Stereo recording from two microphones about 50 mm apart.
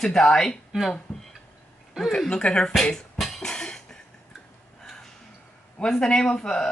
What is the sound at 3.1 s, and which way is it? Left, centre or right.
Cough, centre.